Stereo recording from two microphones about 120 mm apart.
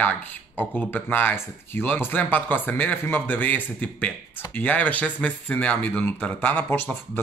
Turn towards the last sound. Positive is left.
turn(degrees=15)  # may be behind; listen again after turning